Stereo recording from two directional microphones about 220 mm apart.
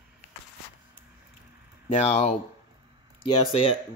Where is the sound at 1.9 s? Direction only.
30° left (ahead or behind).